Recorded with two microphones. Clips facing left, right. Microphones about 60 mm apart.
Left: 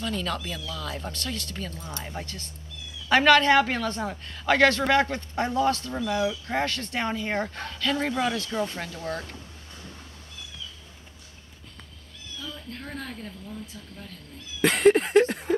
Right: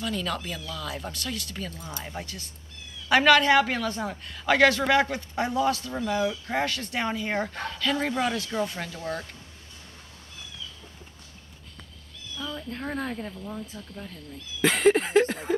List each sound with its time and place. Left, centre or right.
0.0 s speech: centre
3.1 s speech: centre
12.4 s speech: right
14.6 s speech: centre